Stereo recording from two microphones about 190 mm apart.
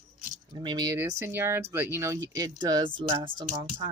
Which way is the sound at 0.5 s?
20° right (ahead or behind).